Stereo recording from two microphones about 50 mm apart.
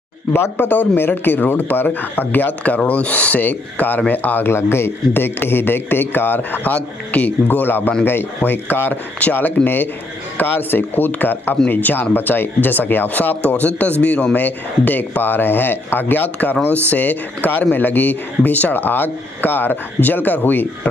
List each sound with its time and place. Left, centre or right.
0.3 s speech: left
4.5 s speech: left
14.3 s speech: left